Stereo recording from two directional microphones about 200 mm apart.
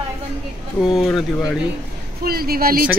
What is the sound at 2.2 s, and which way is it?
Speech, 50° right (ahead or behind).